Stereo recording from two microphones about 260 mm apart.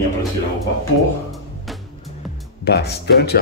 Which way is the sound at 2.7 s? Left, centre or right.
Left.